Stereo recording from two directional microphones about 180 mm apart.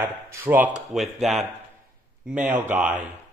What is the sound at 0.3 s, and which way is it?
Speech, 10° right (ahead or behind).